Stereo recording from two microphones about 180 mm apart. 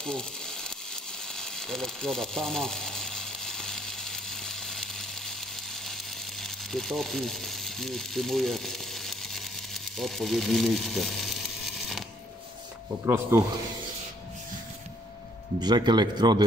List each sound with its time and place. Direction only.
0.0 s a sound: 5° left (ahead or behind)
6.4 s speech: centre (ahead or behind)
13.0 s speech: 15° right (ahead or behind)
15.6 s a man's voice: 25° right (ahead or behind)